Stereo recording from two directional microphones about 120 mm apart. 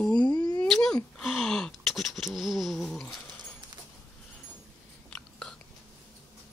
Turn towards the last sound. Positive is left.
turn(degrees=10)  # may be behind; listen again after turning